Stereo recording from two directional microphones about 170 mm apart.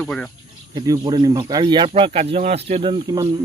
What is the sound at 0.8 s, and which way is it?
Speech, 25° right (ahead or behind).